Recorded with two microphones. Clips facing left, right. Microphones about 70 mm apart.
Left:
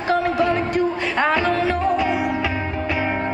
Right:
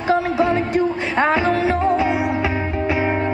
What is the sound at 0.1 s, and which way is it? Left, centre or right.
Music, right.